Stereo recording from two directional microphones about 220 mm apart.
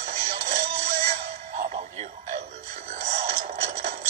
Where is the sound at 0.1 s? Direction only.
30° right (ahead or behind).